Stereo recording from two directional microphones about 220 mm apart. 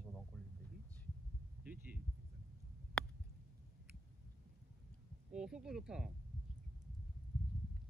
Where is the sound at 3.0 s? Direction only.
5° left (ahead or behind).